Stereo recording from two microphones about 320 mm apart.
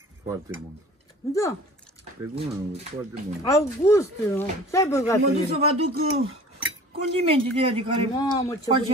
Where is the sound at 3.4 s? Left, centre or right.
Centre.